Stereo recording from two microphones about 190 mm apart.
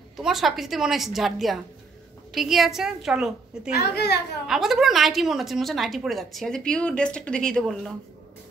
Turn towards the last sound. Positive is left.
turn(degrees=0)  # may be behind; listen again after turning